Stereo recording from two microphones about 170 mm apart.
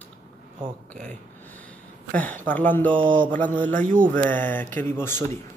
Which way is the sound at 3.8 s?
55° right (ahead or behind).